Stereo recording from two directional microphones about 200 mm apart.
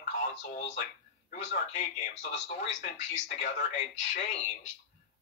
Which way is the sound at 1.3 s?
35° left (ahead or behind).